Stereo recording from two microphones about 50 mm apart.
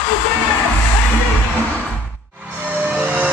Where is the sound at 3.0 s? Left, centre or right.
Right.